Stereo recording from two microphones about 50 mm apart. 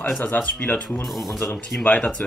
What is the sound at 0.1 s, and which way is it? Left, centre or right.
Speech, left.